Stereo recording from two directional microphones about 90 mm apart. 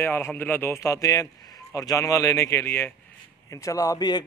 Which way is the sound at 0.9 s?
40° left (ahead or behind).